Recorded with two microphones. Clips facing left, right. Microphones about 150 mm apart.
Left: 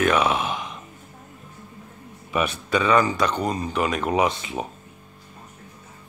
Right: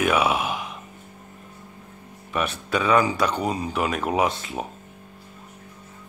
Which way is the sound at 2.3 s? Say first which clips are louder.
Left 2 dB; centre (ahead or behind).